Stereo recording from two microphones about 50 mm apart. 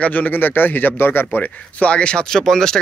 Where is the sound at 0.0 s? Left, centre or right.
Left.